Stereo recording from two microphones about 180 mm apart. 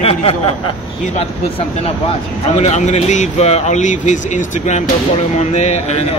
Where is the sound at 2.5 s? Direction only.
40° left (ahead or behind).